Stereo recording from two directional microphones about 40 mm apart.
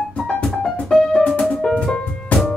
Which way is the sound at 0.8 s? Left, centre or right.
Centre.